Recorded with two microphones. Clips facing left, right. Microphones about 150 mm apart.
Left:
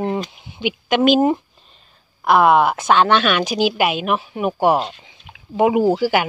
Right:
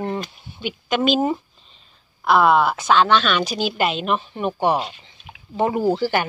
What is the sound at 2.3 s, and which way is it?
Speech, 55° left (ahead or behind).